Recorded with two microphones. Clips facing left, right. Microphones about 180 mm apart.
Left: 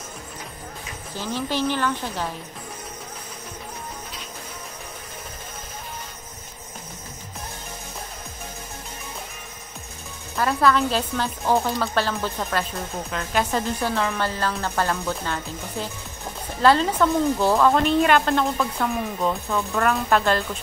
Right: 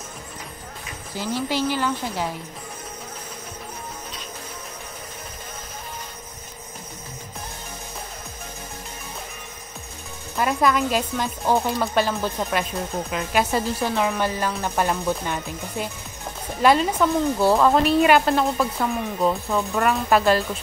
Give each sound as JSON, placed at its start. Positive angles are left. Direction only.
{"t": 1.1, "sound": "a woman's voice", "side_deg": -10}
{"t": 10.3, "sound": "a woman's voice", "side_deg": -15}